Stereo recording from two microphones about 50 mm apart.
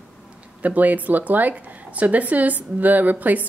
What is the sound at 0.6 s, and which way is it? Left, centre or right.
A woman's voice, right.